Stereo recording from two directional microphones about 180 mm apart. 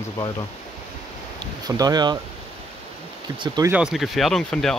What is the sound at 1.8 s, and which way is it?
Speech, 20° right (ahead or behind).